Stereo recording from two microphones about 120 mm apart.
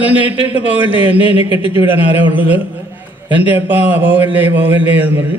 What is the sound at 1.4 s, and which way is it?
Speech, 50° left (ahead or behind).